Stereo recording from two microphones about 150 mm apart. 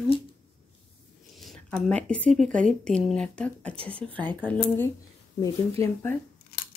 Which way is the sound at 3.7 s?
40° right (ahead or behind).